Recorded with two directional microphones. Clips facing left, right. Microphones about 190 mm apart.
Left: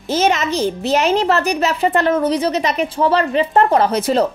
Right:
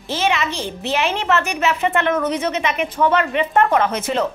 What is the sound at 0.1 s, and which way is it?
A woman's voice, 40° left (ahead or behind).